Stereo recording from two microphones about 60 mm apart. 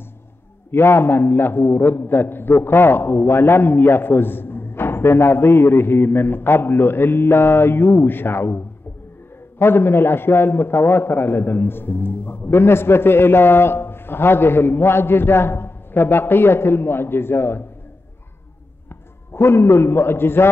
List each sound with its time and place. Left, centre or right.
0.7 s a man's voice: left
19.3 s a man's voice: left